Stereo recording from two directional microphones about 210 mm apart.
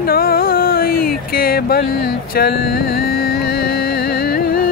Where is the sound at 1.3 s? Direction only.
45° left (ahead or behind).